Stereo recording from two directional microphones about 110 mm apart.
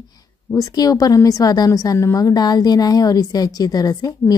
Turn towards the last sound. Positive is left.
turn(degrees=35)  # may be behind; listen again after turning